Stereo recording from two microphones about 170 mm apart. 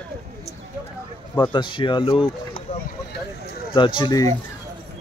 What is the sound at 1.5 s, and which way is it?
Speech, 30° left (ahead or behind).